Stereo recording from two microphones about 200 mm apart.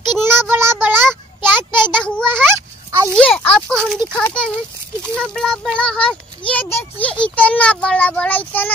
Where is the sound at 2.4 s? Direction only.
15° right (ahead or behind).